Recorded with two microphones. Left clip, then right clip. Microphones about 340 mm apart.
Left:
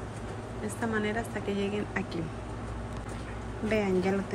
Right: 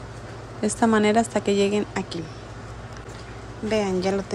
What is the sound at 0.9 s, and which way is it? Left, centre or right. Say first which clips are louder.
A woman's voice: right 12 dB; centre.